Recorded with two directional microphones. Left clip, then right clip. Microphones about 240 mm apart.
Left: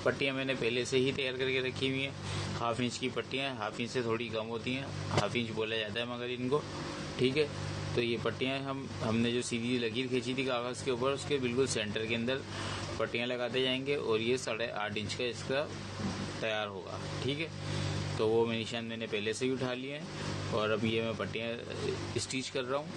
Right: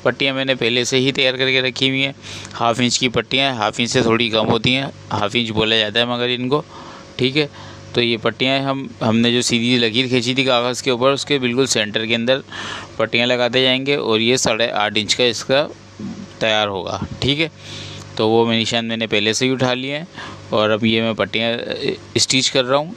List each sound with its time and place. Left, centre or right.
0.0 s a man's voice: right